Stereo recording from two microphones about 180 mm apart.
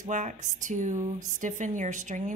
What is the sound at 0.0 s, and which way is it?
Speech, 45° right (ahead or behind).